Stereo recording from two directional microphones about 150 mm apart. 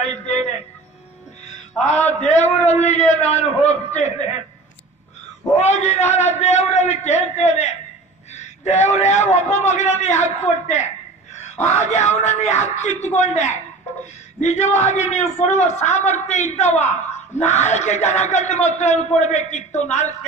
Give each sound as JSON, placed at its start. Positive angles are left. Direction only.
{"t": 0.0, "sound": "a man's voice", "side_deg": 50}
{"t": 2.0, "sound": "a man's voice", "side_deg": 50}
{"t": 5.6, "sound": "a man's voice", "side_deg": 50}